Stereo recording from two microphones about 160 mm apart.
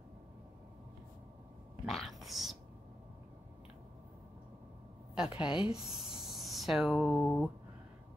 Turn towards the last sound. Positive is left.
turn(degrees=5)  # may be behind; listen again after turning